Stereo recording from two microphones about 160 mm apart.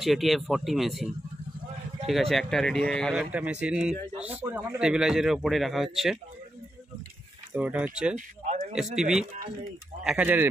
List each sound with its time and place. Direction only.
0.0 s speech: centre (ahead or behind)
7.5 s speech: 10° right (ahead or behind)
8.5 s a sound: 45° right (ahead or behind)
8.9 s speech: 5° right (ahead or behind)